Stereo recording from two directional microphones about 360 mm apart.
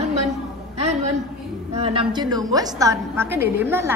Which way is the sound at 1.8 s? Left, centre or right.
Centre.